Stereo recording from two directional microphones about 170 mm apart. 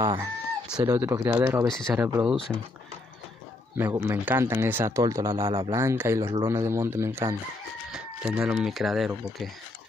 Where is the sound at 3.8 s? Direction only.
15° right (ahead or behind).